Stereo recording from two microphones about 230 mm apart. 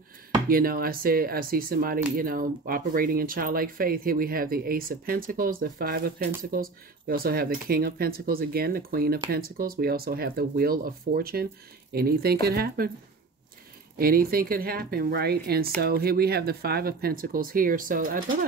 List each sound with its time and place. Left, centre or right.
0.5 s speech: right
13.9 s speech: right